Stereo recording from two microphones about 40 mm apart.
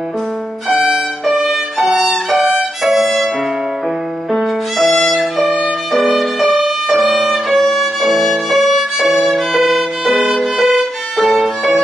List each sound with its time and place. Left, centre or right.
0.7 s music: centre
1.2 s violin: centre
4.3 s music: centre
6.0 s violin: centre
11.1 s violin: centre
11.4 s violin: centre